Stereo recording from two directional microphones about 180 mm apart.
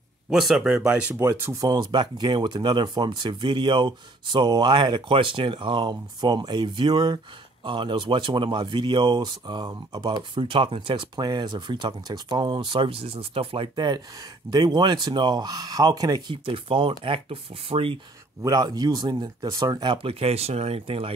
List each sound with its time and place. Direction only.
0.3 s speech: centre (ahead or behind); by 17.9 s 30° right (ahead or behind)
18.4 s speech: 20° right (ahead or behind)